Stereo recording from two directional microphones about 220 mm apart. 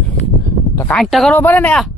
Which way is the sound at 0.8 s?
5° left (ahead or behind).